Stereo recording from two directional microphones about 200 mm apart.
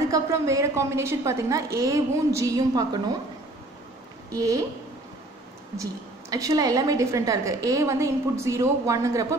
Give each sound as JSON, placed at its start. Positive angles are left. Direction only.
{"t": 0.1, "sound": "a woman's voice", "side_deg": -15}
{"t": 4.3, "sound": "a woman's voice", "side_deg": -15}
{"t": 6.3, "sound": "a woman's voice", "side_deg": -20}